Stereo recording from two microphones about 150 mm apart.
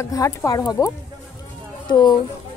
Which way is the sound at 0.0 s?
20° left (ahead or behind).